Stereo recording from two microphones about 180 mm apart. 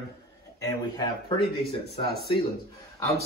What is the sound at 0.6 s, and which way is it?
Speech, 20° left (ahead or behind).